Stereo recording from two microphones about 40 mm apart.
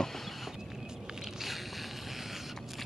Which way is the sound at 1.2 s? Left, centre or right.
Centre.